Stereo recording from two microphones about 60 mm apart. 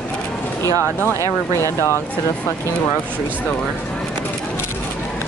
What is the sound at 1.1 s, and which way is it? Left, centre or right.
Speech, right.